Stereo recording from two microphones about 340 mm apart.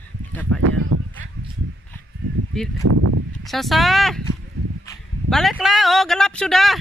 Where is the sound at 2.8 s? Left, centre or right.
Right.